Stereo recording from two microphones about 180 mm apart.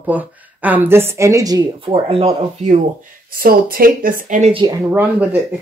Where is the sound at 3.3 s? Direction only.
55° right (ahead or behind); by 4.6 s 40° right (ahead or behind).